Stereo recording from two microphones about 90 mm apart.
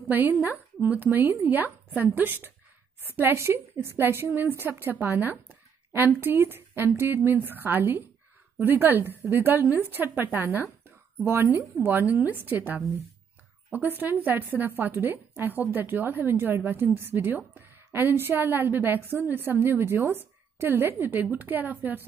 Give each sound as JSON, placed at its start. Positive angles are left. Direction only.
{"t": 0.1, "sound": "a woman's voice", "side_deg": -20}